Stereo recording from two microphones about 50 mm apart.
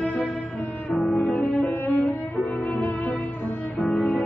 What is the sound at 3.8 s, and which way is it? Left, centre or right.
Music, centre.